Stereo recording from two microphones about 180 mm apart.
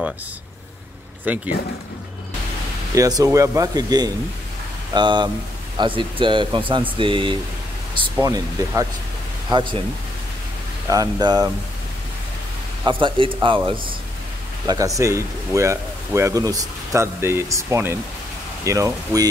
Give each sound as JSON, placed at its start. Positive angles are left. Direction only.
{"t": 1.2, "sound": "speech", "side_deg": -10}
{"t": 2.9, "sound": "speech", "side_deg": -20}
{"t": 10.9, "sound": "speech", "side_deg": -20}
{"t": 12.8, "sound": "speech", "side_deg": -25}
{"t": 15.0, "sound": "speech", "side_deg": -15}